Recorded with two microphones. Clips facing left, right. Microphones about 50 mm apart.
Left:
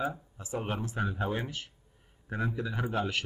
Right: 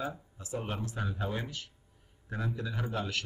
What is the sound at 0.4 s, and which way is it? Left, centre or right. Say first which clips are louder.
A man's voice: left 2 dB; left.